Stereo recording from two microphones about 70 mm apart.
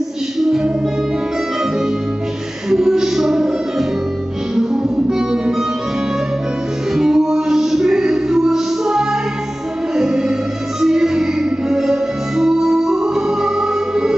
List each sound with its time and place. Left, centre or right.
2.7 s music: centre
5.3 s music: centre
6.9 s music: centre